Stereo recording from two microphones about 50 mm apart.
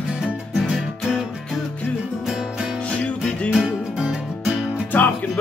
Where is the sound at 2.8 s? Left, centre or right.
Left.